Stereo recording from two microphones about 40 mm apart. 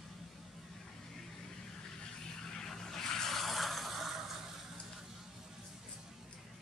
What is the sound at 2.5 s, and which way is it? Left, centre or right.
Vehicle, centre.